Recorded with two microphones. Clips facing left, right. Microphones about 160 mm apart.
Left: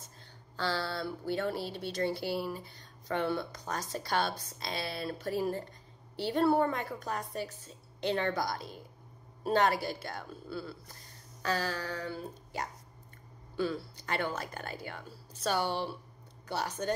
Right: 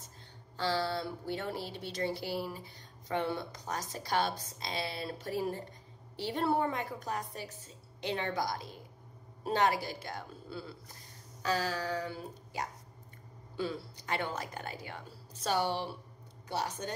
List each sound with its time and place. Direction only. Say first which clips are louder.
0.6 s speech: right 1 dB; 15° right (ahead or behind)